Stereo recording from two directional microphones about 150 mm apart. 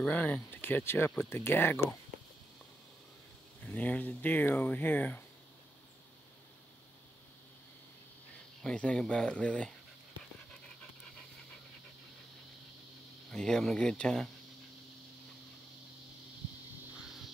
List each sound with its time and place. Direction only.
0.0 s speech: 10° left (ahead or behind)
3.6 s speech: 10° left (ahead or behind)
8.6 s speech: 5° left (ahead or behind)
13.3 s speech: 5° left (ahead or behind)